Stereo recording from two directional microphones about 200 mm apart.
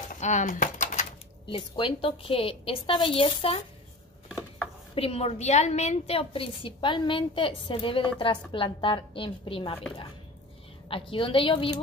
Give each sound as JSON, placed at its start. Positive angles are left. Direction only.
{"t": 0.1, "sound": "a sound", "side_deg": 35}
{"t": 1.5, "sound": "a woman's voice", "side_deg": 25}
{"t": 4.9, "sound": "a woman's voice", "side_deg": 30}
{"t": 10.9, "sound": "a woman's voice", "side_deg": 25}